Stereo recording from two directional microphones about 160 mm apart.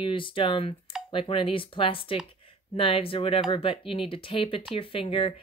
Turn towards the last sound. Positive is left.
turn(degrees=35)  # may be behind; listen again after turning